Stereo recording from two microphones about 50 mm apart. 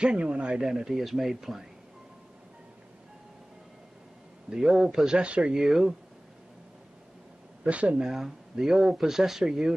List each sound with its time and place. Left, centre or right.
0.0 s speech: right
4.5 s speech: centre
5.6 s speech: centre
7.6 s speech: right
8.0 s speech: centre